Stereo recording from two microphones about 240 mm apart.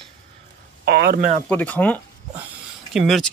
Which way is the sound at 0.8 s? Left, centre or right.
Right.